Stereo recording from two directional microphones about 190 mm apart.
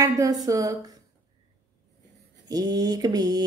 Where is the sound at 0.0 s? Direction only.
20° right (ahead or behind).